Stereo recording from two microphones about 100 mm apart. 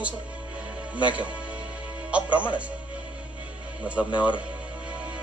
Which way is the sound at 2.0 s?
10° right (ahead or behind).